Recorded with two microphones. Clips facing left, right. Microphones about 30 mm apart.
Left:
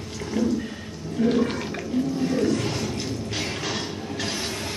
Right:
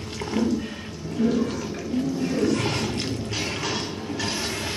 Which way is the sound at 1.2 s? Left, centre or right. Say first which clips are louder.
Left 2 dB; left.